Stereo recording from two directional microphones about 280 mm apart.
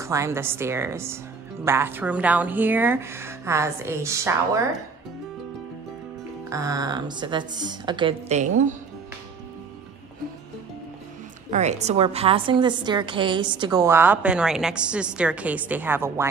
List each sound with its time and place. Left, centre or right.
0.0 s a woman's voice: centre
6.5 s a woman's voice: centre
11.5 s a woman's voice: right; by 16.3 s centre